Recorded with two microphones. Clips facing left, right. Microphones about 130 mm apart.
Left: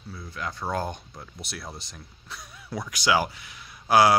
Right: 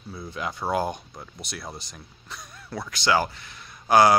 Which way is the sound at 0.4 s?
15° right (ahead or behind).